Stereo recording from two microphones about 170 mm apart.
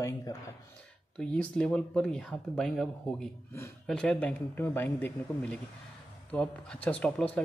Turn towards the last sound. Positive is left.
turn(degrees=5)  # may be behind; listen again after turning